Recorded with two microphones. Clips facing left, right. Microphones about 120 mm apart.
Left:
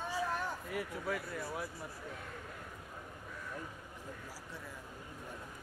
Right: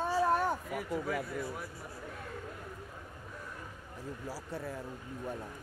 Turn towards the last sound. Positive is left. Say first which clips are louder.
# right 9 dB
turn(degrees=-40)  # may be behind; listen again after turning